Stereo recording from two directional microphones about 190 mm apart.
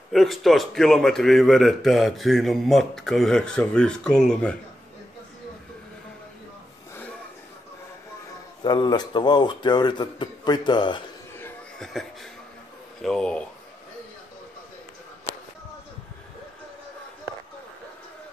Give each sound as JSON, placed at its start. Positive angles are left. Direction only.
{"t": 0.1, "sound": "speech", "side_deg": 0}
{"t": 8.6, "sound": "a man's voice", "side_deg": 20}
{"t": 11.3, "sound": "chuckle", "side_deg": 10}
{"t": 11.9, "sound": "speech", "side_deg": 0}